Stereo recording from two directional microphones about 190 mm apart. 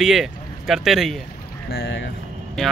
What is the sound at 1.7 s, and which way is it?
Speech, 60° left (ahead or behind).